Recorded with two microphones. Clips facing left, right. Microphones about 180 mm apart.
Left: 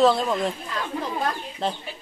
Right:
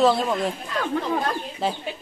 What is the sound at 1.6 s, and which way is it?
Speech, 5° right (ahead or behind).